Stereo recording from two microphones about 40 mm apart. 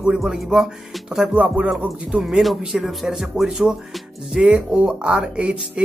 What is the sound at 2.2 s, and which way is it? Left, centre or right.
Speech, centre.